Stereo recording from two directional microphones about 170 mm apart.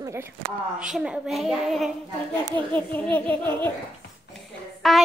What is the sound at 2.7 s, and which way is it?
A child's voice, 10° left (ahead or behind).